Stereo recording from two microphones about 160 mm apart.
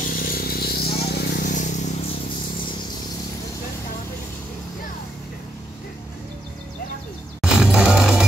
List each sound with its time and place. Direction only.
0.0 s vehicle: 65° left (ahead or behind)
1.5 s a sound: 50° left (ahead or behind)
7.4 s music: 5° right (ahead or behind)